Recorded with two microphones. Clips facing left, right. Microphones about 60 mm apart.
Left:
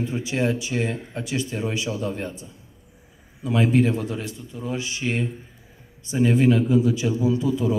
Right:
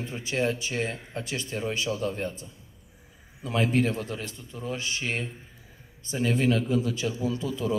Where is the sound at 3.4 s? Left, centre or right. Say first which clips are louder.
Left 5 dB; left.